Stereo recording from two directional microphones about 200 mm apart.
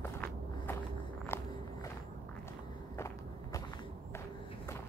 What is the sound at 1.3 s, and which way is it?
Walk, 10° left (ahead or behind).